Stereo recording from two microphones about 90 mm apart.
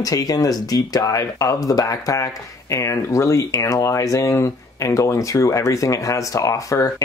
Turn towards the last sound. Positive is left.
turn(degrees=40)  # may be behind; listen again after turning